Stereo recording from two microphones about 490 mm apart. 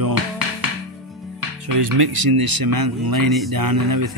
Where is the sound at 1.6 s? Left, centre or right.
Right.